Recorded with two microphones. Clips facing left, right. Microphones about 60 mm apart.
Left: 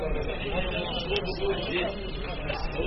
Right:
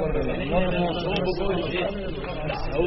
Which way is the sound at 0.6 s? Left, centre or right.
Right.